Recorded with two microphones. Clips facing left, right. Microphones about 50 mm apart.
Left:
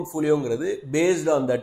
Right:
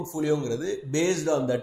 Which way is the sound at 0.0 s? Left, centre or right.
Centre.